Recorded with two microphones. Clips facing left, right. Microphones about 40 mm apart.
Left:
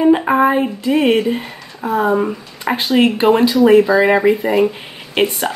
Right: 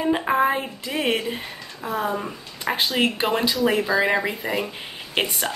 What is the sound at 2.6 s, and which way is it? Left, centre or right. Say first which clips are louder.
Speech: left 7 dB; centre.